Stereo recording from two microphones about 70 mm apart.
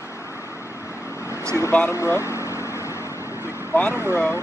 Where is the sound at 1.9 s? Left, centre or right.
Left.